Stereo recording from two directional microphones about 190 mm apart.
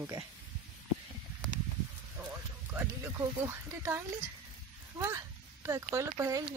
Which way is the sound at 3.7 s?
15° right (ahead or behind).